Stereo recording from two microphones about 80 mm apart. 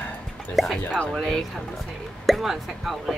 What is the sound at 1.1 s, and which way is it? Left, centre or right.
Speech, centre.